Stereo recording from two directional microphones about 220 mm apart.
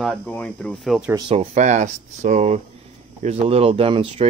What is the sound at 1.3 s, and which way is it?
Speech, 30° right (ahead or behind).